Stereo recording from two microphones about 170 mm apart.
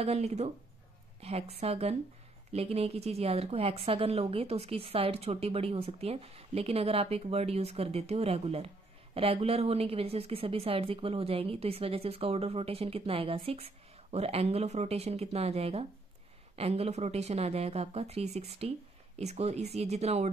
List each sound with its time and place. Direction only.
0.0 s speech: 40° right (ahead or behind)